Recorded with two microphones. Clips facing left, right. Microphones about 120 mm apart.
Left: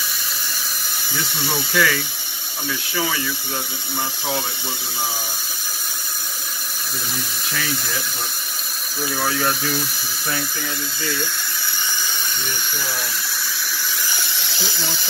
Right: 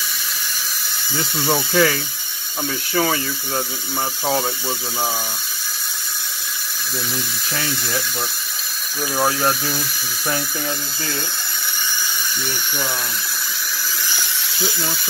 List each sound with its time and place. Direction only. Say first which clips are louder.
1.7 s speech: right 2 dB; 30° right (ahead or behind)
2.9 s speech: right 5 dB; 45° right (ahead or behind)
9.1 s speech: right 3 dB; 30° right (ahead or behind)